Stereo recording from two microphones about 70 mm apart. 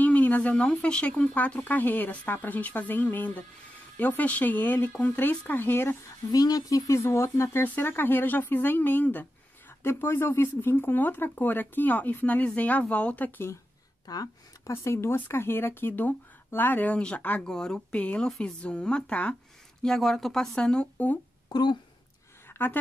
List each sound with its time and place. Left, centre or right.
0.0 s a sound: left
0.8 s speech: centre
6.3 s speech: left
7.6 s speech: left
14.0 s speech: left
14.7 s speech: left; by 17.4 s centre
17.4 s speech: centre
19.8 s speech: centre
21.5 s speech: left
22.5 s a sound: left